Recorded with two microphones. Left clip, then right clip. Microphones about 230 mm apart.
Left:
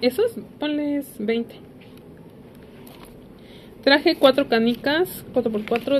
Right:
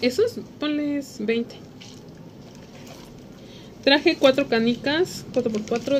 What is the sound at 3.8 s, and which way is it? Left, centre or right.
Speech, left.